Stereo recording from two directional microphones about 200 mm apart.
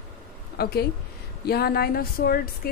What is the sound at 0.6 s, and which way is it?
Speech, 50° left (ahead or behind).